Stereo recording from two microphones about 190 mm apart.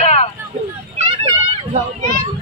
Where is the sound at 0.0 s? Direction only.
35° left (ahead or behind).